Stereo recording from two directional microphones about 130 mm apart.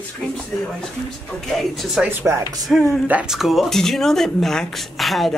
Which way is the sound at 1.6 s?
Centre (ahead or behind).